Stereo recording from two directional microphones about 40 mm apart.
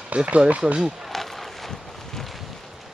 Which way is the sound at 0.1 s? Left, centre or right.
Right.